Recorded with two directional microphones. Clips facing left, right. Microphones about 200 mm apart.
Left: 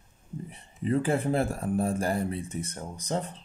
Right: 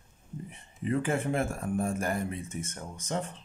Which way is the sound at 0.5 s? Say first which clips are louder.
Left 3 dB; 35° left (ahead or behind).